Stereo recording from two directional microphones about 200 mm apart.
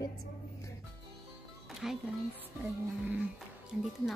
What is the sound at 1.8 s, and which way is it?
Speech, centre (ahead or behind).